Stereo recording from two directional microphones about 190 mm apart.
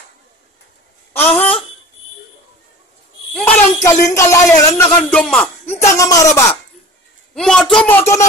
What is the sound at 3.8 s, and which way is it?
A man's voice, 15° left (ahead or behind).